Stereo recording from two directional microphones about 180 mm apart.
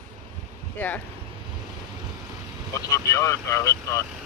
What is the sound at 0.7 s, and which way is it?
Speech, 10° left (ahead or behind).